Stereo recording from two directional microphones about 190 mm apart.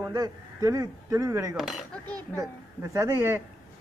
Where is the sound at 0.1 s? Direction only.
20° right (ahead or behind).